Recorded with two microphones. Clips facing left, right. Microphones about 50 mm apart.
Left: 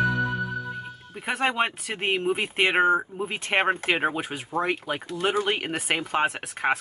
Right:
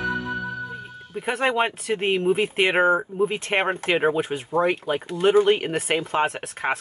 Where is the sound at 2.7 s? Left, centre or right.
Centre.